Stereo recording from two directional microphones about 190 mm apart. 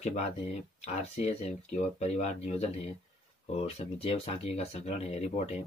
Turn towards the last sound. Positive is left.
turn(degrees=35)  # may be behind; listen again after turning